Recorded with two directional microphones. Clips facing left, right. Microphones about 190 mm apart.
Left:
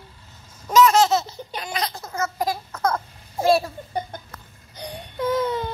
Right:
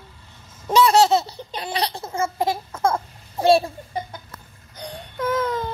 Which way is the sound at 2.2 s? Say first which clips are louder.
Right 2 dB; 25° right (ahead or behind).